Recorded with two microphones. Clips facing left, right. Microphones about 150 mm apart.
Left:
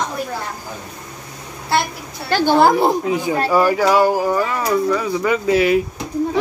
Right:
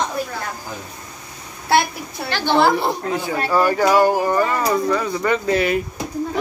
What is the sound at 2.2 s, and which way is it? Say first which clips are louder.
Speech: left 3 dB; 45° left (ahead or behind).